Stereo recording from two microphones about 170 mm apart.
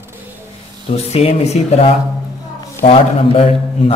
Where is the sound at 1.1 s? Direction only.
35° left (ahead or behind).